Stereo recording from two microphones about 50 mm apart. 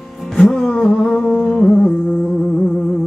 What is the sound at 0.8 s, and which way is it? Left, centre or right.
Humming, centre.